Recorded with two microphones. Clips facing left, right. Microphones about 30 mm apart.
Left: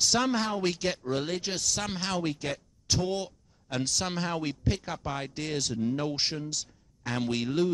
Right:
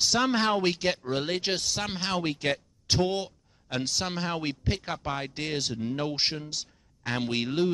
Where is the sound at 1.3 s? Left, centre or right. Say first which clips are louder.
Right 3 dB; right.